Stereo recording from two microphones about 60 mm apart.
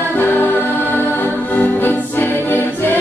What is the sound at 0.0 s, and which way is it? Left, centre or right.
Music, left.